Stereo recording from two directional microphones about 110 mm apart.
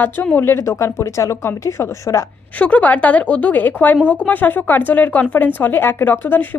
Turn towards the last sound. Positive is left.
turn(degrees=15)  # may be behind; listen again after turning